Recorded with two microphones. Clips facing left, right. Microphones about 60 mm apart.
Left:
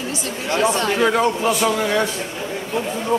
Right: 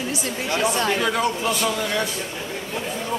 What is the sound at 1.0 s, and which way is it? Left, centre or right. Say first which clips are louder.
Speech: left 5 dB; left.